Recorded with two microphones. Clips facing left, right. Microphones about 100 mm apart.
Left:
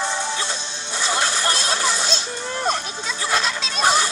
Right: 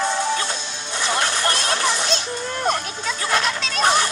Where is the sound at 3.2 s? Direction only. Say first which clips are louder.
Right 1 dB; 20° left (ahead or behind).